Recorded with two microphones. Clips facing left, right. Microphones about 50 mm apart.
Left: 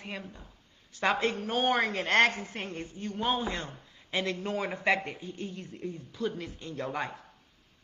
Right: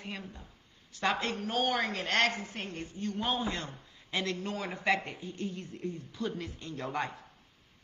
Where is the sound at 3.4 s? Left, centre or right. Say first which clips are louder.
Left 1 dB; left.